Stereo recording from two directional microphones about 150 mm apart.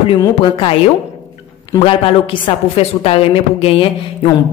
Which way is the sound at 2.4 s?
40° left (ahead or behind).